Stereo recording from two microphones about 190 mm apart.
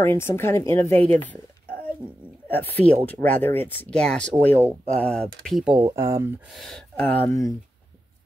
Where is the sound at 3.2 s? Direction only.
10° left (ahead or behind).